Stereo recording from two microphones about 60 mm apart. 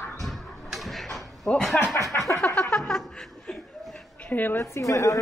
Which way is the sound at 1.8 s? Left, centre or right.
Left.